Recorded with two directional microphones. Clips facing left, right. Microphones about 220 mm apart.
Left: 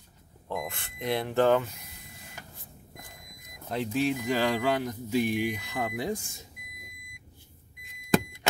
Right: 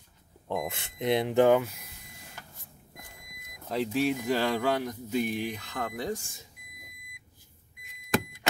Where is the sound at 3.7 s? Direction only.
Centre (ahead or behind).